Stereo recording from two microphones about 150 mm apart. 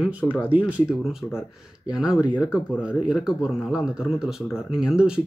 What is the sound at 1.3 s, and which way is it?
Speech, 15° left (ahead or behind).